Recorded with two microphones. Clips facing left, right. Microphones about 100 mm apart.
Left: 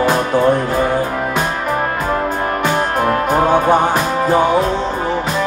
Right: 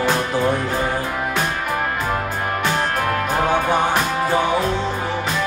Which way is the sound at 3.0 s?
35° left (ahead or behind).